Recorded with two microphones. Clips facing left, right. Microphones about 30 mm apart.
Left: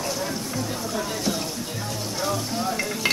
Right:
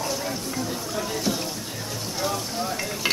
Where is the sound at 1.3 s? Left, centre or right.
Centre.